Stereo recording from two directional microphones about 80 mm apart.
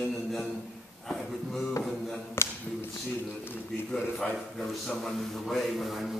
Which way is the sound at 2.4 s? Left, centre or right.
Left.